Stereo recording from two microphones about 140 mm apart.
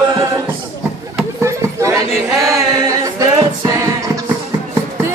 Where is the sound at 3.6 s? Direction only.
25° right (ahead or behind).